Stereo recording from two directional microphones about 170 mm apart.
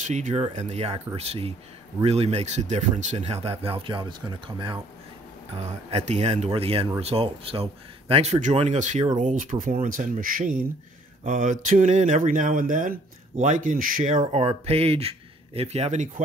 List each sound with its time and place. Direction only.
0.1 s speech: 40° right (ahead or behind); by 4.7 s 25° right (ahead or behind)
5.6 s speech: 40° right (ahead or behind)
14.2 s speech: 40° right (ahead or behind)